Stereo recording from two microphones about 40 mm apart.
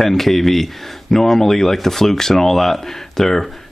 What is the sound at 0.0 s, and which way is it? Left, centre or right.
Speech, centre.